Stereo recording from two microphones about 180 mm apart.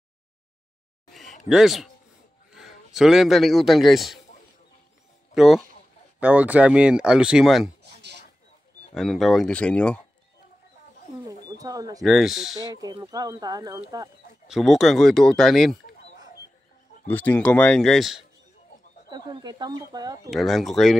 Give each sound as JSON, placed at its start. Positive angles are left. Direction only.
{"t": 1.0, "sound": "a sound", "side_deg": 0}
{"t": 1.5, "sound": "a man's voice", "side_deg": 0}
{"t": 5.3, "sound": "speech", "side_deg": 0}
{"t": 8.9, "sound": "speech", "side_deg": 0}
{"t": 11.4, "sound": "wild animals", "side_deg": -20}
{"t": 12.0, "sound": "speech", "side_deg": 0}
{"t": 12.8, "sound": "speech", "side_deg": -20}
{"t": 14.5, "sound": "speech", "side_deg": 0}
{"t": 17.1, "sound": "speech", "side_deg": 10}
{"t": 19.0, "sound": "speech", "side_deg": -25}
{"t": 20.2, "sound": "speech", "side_deg": 0}